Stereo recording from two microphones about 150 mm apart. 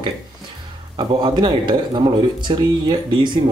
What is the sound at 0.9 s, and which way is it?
Speech, 30° right (ahead or behind).